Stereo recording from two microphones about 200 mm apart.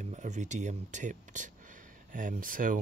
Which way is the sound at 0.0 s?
35° right (ahead or behind).